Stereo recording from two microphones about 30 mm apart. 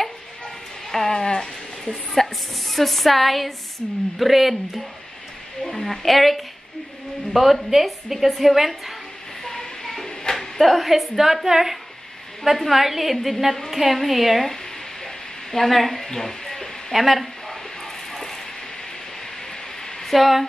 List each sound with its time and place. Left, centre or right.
0.9 s a sound: centre
2.2 s speech: centre
2.7 s a woman's voice: centre
5.7 s a woman's voice: centre
9.4 s a sound: centre
10.9 s a woman's voice: centre
12.5 s a woman's voice: centre
15.5 s a woman's voice: centre
16.9 s a woman's voice: centre
20.1 s speech: centre